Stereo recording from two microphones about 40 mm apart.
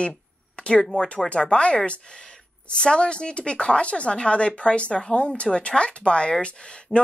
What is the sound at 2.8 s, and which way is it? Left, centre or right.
Speech, left.